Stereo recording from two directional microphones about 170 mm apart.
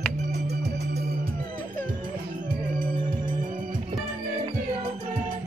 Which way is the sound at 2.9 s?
25° right (ahead or behind).